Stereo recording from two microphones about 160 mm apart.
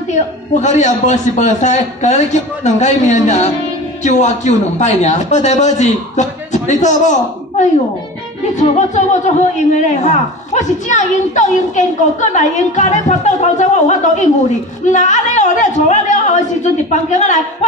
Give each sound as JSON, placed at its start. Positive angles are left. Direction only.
{"t": 0.6, "sound": "a woman's voice", "side_deg": 45}